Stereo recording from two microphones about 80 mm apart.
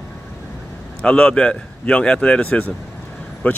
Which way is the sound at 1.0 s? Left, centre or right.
Centre.